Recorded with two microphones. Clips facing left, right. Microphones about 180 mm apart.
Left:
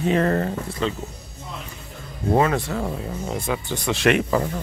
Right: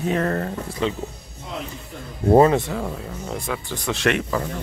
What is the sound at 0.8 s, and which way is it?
Speech, 15° right (ahead or behind).